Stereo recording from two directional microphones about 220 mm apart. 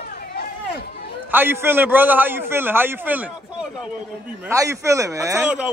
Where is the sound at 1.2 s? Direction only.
10° right (ahead or behind).